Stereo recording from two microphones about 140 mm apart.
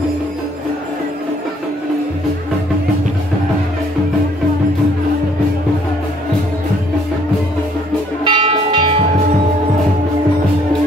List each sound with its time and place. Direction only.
8.2 s music: 35° right (ahead or behind)